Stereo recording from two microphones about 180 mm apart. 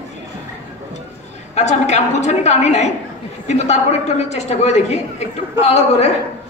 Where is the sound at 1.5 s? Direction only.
40° left (ahead or behind).